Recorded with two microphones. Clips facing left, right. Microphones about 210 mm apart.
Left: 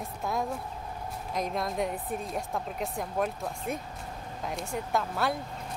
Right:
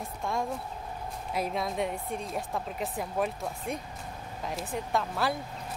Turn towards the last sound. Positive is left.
turn(degrees=0)  # may be behind; listen again after turning